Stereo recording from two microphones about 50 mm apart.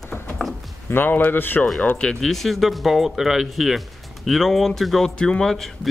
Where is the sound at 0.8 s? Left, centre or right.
Left.